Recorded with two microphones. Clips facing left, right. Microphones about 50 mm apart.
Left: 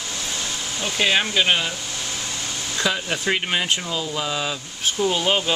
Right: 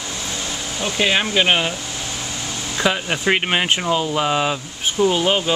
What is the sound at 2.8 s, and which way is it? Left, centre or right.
Speech, right.